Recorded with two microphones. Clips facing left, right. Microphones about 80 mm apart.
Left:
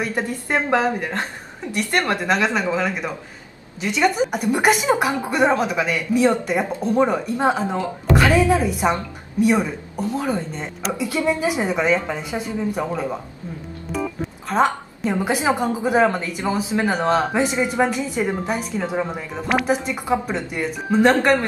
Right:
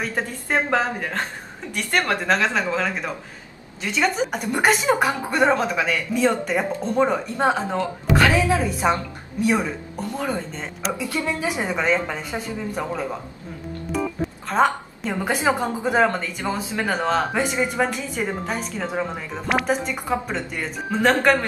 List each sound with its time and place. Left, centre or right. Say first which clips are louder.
0.0 s a woman's voice: left 3 dB; centre
10.1 s a woman's voice: left 2 dB; centre
10.8 s speech: left 3 dB; centre
13.9 s organ: even; centre
15.0 s a woman's voice: left 2 dB; centre